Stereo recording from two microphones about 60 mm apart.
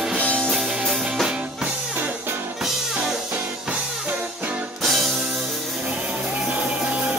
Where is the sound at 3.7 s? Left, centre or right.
Right.